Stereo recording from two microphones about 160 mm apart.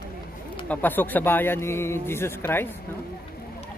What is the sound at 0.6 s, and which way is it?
Speech, 10° left (ahead or behind).